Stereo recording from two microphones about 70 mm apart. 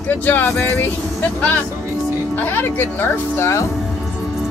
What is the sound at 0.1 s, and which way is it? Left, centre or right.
Speech, left.